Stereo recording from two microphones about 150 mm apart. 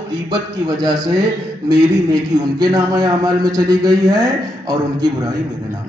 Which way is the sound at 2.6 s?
25° right (ahead or behind).